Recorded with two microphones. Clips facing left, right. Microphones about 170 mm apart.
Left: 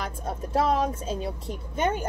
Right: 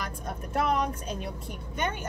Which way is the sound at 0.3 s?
25° left (ahead or behind).